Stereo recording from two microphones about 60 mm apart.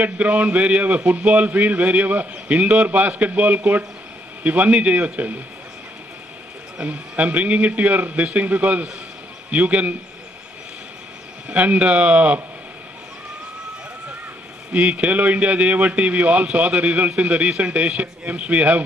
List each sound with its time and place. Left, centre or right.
0.0 s a man's voice: right
6.8 s a man's voice: right
11.4 s a man's voice: right
14.7 s a man's voice: right